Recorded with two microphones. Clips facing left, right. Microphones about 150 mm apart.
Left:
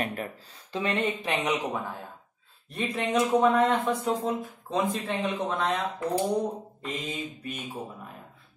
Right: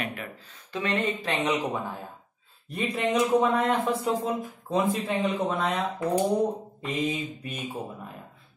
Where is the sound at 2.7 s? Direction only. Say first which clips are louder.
Right 1 dB; centre (ahead or behind).